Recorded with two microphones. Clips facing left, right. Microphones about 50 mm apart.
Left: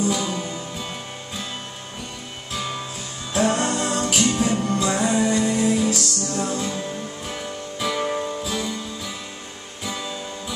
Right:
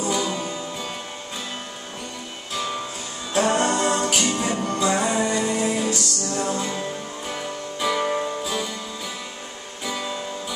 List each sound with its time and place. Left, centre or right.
0.5 s music: centre
3.3 s music: centre
9.8 s music: centre